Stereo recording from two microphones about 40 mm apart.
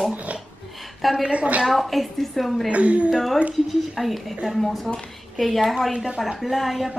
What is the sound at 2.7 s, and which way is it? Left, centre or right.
Speech, right.